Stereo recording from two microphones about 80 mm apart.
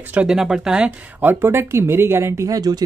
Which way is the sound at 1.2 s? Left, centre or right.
Right.